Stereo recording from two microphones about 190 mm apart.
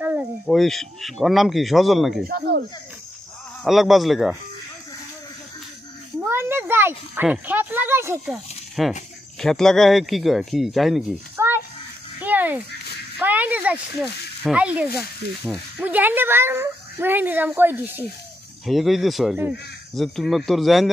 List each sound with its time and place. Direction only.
0.0 s a sound: 10° right (ahead or behind)
0.5 s speech: centre (ahead or behind)
2.2 s speech: 50° right (ahead or behind)
3.6 s speech: centre (ahead or behind)
6.1 s a child's voice: 15° right (ahead or behind)
8.3 s speech: centre (ahead or behind)
11.3 s a sound: 10° right (ahead or behind)
13.2 s speech: 10° right (ahead or behind)